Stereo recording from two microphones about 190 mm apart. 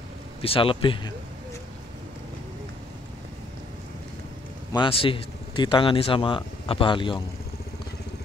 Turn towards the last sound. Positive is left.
turn(degrees=25)  # may be behind; listen again after turning